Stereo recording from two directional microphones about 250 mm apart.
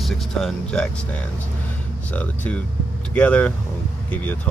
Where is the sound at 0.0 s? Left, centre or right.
Centre.